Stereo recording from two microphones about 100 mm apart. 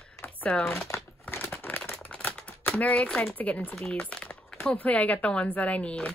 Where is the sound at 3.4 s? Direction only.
15° left (ahead or behind).